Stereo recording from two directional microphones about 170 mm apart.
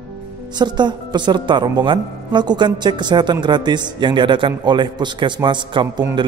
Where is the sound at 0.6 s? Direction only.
25° right (ahead or behind).